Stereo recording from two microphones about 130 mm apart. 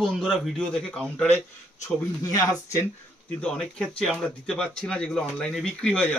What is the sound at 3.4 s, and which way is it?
Speech, 5° left (ahead or behind).